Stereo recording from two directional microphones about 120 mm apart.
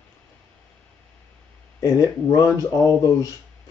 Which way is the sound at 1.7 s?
30° left (ahead or behind).